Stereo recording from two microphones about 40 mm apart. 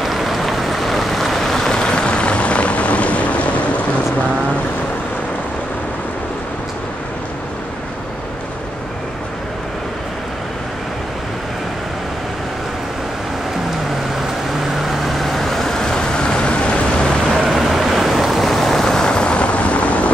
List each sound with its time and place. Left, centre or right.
0.0 s a sound: centre; by 3.8 s left
14.8 s vehicle: centre; by 16.8 s left
17.3 s vehicle: centre; by 20.1 s left